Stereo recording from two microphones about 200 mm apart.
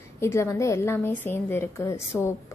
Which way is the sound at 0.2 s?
15° left (ahead or behind).